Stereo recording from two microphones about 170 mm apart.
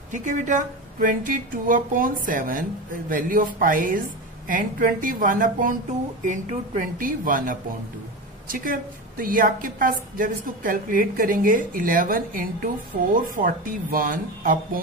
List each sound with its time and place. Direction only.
0.1 s a woman's voice: 50° right (ahead or behind)